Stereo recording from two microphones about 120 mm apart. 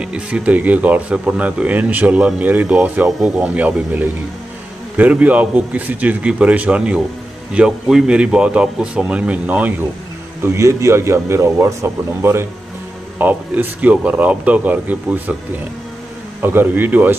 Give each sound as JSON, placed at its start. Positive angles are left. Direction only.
{"t": 0.0, "sound": "speech", "side_deg": -10}
{"t": 10.4, "sound": "speech", "side_deg": -25}
{"t": 16.4, "sound": "speech", "side_deg": -15}